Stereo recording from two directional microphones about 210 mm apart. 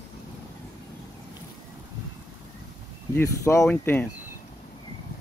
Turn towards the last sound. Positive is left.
turn(degrees=10)  # may be behind; listen again after turning